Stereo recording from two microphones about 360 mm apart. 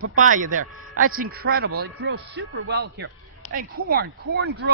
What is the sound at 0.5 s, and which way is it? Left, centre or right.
Speech, right.